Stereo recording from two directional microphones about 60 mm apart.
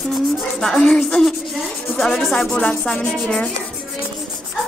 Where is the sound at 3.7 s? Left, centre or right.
Centre.